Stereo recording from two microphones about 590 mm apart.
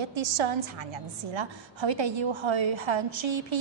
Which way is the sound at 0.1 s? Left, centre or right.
Right.